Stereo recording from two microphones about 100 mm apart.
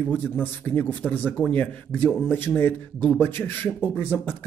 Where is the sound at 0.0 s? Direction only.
20° left (ahead or behind).